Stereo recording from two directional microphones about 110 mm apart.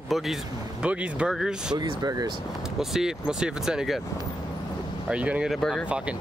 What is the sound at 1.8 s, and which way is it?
Speech, 35° right (ahead or behind).